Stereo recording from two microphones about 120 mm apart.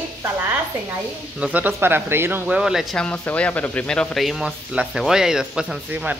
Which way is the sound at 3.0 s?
10° left (ahead or behind).